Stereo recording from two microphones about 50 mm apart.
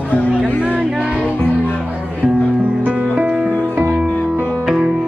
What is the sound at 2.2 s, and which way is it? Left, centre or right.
Music, right.